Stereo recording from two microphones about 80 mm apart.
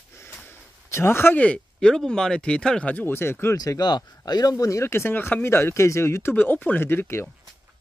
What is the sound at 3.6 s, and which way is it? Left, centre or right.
Speech, left.